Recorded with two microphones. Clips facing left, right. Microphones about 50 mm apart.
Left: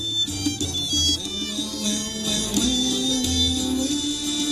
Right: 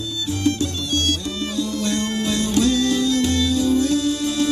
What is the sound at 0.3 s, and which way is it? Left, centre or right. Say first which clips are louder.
Music: right 6 dB; right.